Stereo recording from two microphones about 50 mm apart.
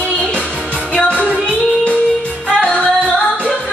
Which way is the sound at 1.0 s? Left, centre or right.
Left.